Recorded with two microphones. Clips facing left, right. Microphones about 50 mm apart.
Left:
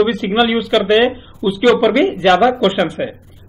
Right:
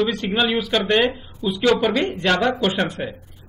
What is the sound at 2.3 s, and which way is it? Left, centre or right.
Speech, left.